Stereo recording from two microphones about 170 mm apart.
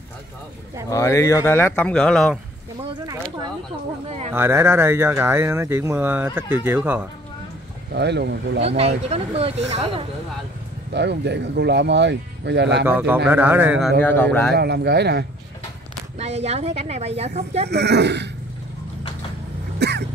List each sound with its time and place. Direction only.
0.8 s speech: 15° left (ahead or behind)
4.3 s speech: 15° right (ahead or behind)
7.9 s speech: 80° right
8.6 s speech: 35° right (ahead or behind)
10.9 s speech: 90° right
12.8 s speech: 10° right (ahead or behind)
14.0 s speech: 10° left (ahead or behind)
14.5 s speech: 75° right (ahead or behind)
16.2 s speech: 40° right (ahead or behind)
17.6 s speech: 80° right
19.8 s vehicle: 80° right